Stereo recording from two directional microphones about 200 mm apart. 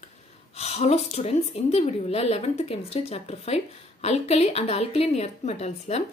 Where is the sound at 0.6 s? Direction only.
30° left (ahead or behind).